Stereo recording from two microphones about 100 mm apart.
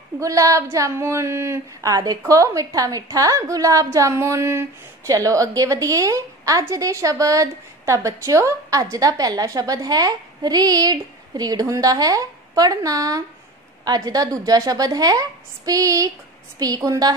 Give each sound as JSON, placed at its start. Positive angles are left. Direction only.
{"t": 0.2, "sound": "a woman's voice", "side_deg": -35}